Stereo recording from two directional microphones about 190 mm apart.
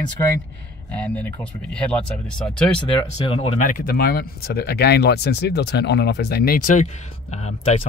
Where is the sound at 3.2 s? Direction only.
30° left (ahead or behind).